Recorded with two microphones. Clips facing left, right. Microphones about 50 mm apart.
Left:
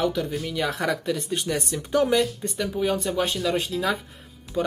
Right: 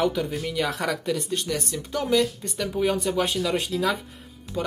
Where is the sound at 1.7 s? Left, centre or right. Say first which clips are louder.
Left 6 dB; left.